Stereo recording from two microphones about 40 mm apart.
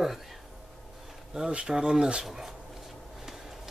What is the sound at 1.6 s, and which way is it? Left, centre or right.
Speech, centre.